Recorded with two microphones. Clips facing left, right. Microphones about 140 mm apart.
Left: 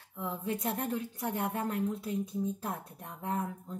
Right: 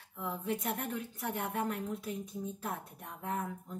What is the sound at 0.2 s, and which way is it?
Speech, 30° left (ahead or behind).